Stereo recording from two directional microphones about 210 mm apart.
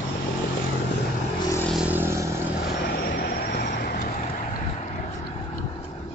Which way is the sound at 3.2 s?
45° left (ahead or behind).